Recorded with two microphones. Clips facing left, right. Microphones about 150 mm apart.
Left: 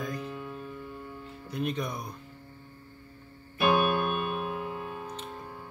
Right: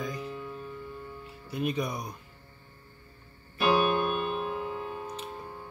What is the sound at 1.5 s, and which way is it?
Speech, 5° right (ahead or behind).